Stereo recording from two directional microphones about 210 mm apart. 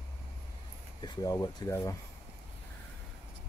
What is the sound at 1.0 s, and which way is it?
Speech, 15° left (ahead or behind).